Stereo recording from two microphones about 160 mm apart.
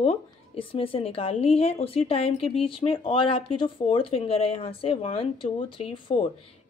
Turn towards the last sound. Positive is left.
turn(degrees=35)  # may be behind; listen again after turning